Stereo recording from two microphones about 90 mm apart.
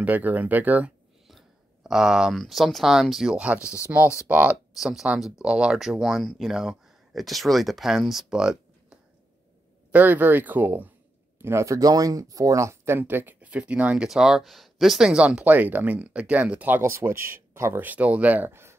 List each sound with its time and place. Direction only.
0.0 s speech: 20° right (ahead or behind)
1.2 s speech: 5° right (ahead or behind)
4.7 s speech: 5° right (ahead or behind)
9.8 s speech: 20° right (ahead or behind)
17.8 s speech: 15° right (ahead or behind)